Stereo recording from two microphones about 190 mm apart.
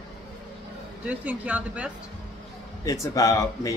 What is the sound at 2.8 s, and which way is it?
Speech, 15° left (ahead or behind).